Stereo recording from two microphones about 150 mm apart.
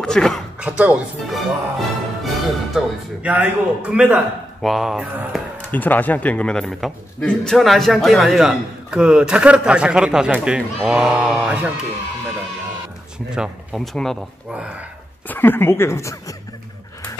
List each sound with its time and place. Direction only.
0.0 s a sound: 5° left (ahead or behind)
0.6 s a man's voice: 10° right (ahead or behind)
5.6 s a man's voice: 10° left (ahead or behind); by 11.7 s 5° right (ahead or behind)
13.3 s a man's voice: 5° right (ahead or behind)
15.2 s speech: 15° left (ahead or behind)